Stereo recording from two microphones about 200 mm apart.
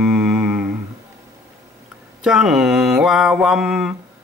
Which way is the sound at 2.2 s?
Centre (ahead or behind).